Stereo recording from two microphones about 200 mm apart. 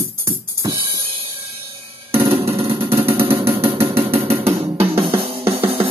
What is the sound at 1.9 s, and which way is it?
Drum, 30° right (ahead or behind).